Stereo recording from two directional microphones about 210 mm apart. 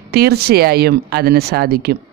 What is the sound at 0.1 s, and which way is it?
A man's voice, 50° right (ahead or behind).